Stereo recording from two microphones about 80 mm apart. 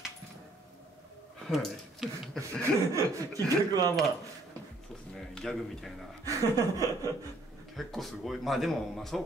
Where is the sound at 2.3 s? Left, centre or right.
Right.